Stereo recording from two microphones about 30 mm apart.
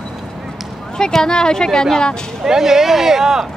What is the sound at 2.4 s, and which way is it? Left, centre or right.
Speech, centre.